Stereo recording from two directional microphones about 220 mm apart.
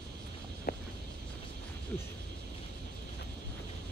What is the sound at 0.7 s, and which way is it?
Vehicle, 40° left (ahead or behind).